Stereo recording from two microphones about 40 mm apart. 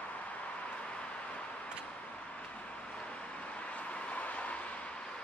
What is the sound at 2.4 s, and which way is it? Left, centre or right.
Vehicle, left.